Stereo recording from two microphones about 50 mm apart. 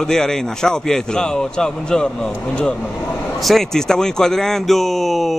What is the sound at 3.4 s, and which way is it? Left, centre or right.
A man's voice, centre.